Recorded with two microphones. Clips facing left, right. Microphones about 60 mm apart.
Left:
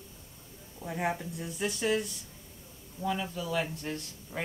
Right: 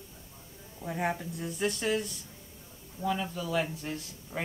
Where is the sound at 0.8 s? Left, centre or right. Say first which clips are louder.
Even; centre.